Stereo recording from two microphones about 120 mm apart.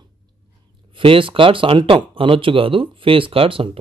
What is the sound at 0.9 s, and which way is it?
Speech, 45° right (ahead or behind).